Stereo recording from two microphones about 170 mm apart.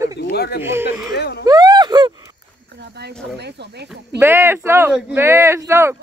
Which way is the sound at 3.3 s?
80° right.